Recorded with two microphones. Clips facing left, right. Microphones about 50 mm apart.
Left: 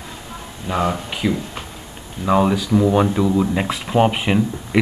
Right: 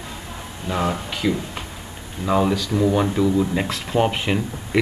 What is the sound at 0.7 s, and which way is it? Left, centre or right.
Speech, centre.